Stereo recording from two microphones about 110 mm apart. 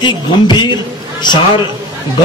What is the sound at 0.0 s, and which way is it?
Speech, 45° left (ahead or behind).